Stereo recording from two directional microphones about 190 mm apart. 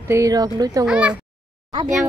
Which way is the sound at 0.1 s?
20° right (ahead or behind).